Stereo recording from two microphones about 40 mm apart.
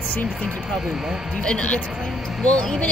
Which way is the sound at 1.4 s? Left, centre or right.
Left.